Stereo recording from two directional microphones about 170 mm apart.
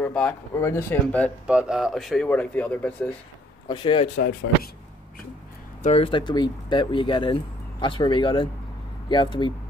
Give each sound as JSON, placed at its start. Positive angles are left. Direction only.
{"t": 0.0, "sound": "speech", "side_deg": 5}
{"t": 1.5, "sound": "speech", "side_deg": -5}
{"t": 3.6, "sound": "speech", "side_deg": 25}
{"t": 4.5, "sound": "speech", "side_deg": 90}
{"t": 5.8, "sound": "speech", "side_deg": 40}